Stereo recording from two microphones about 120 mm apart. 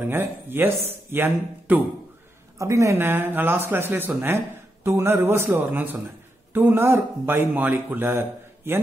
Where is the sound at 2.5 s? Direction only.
25° right (ahead or behind).